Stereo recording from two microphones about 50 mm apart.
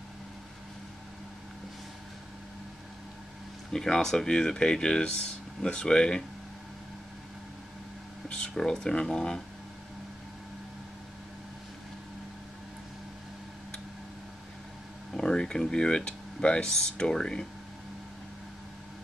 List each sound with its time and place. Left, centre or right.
3.7 s speech: centre
8.3 s speech: centre
15.1 s speech: centre